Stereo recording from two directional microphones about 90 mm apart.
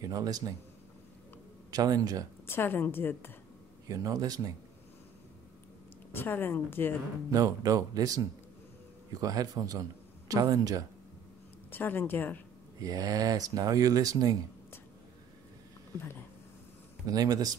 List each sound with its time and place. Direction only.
0.0 s speech: 40° right (ahead or behind)
1.7 s speech: 45° right (ahead or behind)
2.4 s a woman's voice: 25° left (ahead or behind)
3.9 s speech: 45° right (ahead or behind)
6.1 s a woman's voice: 25° left (ahead or behind)
7.2 s a man's voice: 40° right (ahead or behind)
11.7 s a woman's voice: 25° left (ahead or behind)
12.8 s speech: 40° right (ahead or behind)
17.1 s speech: 45° right (ahead or behind)